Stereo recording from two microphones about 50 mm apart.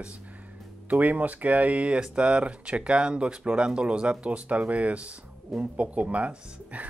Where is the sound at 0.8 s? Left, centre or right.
Right.